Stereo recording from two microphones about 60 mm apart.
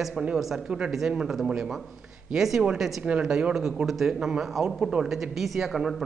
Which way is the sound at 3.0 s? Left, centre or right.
Right.